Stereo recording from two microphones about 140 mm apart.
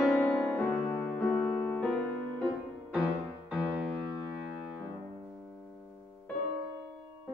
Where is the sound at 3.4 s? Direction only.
5° right (ahead or behind).